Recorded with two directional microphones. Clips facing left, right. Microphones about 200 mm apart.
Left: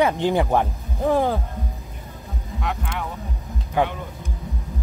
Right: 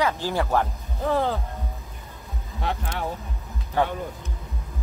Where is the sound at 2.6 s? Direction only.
35° right (ahead or behind).